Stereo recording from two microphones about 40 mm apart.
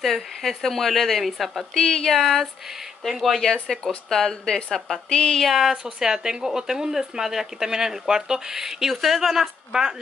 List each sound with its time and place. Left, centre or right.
0.0 s speech: centre
1.7 s a woman's voice: centre
2.0 s a woman's voice: centre
5.1 s a woman's voice: centre
5.4 s speech: centre
5.9 s speech: centre